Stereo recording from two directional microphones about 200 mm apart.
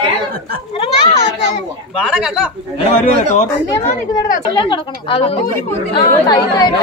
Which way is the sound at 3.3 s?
40° left (ahead or behind).